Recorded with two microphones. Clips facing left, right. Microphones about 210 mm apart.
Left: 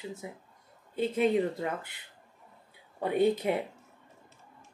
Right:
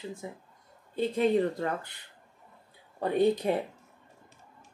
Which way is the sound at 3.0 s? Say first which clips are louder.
Right 1 dB; 10° left (ahead or behind).